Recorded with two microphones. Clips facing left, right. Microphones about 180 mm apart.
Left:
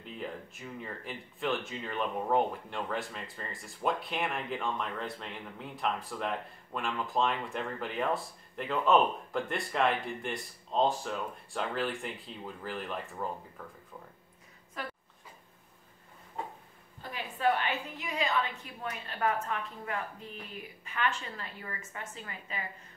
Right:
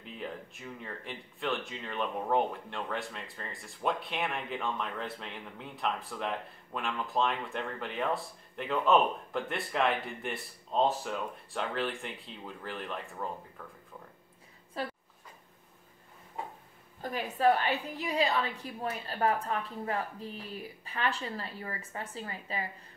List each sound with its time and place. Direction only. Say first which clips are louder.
0.0 s speech: left 1 dB; centre (ahead or behind)
14.8 s a woman's voice: right 4 dB; 30° right (ahead or behind)
17.0 s a woman's voice: right 3 dB; 40° right (ahead or behind)